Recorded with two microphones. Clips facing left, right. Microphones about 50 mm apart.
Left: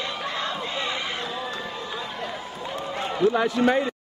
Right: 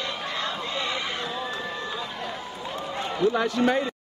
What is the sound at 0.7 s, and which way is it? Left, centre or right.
Chatter, left.